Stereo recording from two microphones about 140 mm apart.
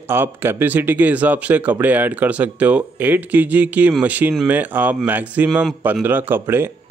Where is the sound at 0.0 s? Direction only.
15° right (ahead or behind).